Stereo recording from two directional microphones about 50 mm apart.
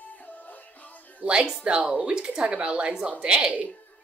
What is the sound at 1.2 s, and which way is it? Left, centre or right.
Speech, centre.